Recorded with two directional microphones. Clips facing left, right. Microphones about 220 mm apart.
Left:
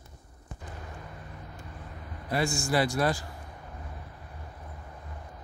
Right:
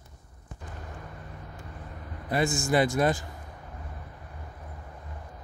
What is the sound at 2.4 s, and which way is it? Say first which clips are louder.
Speech: right 3 dB; 20° right (ahead or behind).